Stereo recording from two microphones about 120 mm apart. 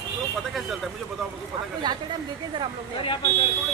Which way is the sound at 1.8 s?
35° right (ahead or behind).